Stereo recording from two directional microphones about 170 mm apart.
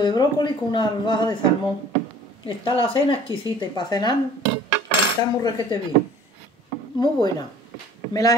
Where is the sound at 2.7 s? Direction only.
30° left (ahead or behind).